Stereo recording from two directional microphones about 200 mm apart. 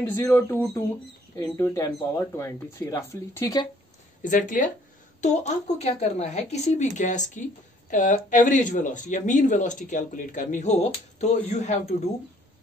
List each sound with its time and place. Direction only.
0.0 s speech: 10° left (ahead or behind)
4.2 s speech: 40° left (ahead or behind)